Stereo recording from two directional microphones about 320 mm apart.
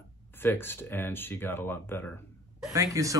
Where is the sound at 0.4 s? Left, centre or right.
Centre.